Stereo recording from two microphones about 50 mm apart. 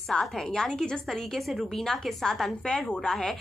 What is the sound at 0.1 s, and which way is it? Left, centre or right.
A woman's voice, centre.